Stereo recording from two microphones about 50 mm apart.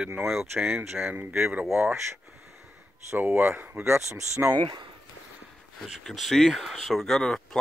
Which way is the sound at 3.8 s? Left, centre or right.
Right.